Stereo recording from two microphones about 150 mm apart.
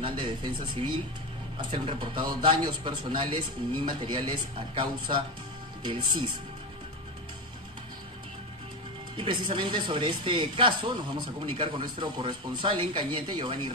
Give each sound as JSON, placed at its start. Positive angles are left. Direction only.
{"t": 0.0, "sound": "speech", "side_deg": -30}
{"t": 1.7, "sound": "speech", "side_deg": -35}
{"t": 9.1, "sound": "speech", "side_deg": -35}